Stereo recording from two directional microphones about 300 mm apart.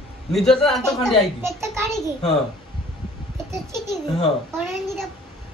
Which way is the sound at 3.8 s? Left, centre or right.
Centre.